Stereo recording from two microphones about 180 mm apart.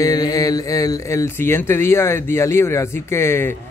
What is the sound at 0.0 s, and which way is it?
Speech, 20° left (ahead or behind).